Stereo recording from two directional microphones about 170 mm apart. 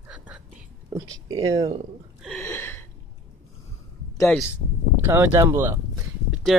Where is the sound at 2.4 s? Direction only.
15° left (ahead or behind).